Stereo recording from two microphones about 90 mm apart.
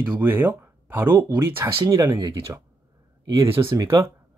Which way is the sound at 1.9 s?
40° right (ahead or behind).